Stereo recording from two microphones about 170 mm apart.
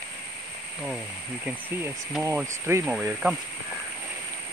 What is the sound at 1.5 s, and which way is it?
Speech, 10° right (ahead or behind).